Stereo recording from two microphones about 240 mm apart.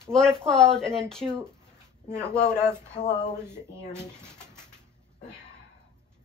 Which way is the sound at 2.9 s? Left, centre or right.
Left.